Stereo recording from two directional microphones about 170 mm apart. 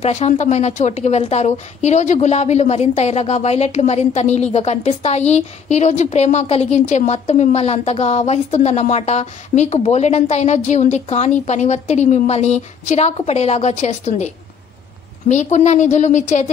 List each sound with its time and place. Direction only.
0.0 s a woman's voice: 40° left (ahead or behind)